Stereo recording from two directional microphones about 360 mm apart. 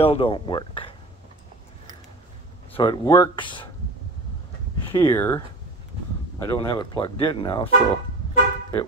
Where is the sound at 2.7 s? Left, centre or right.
Centre.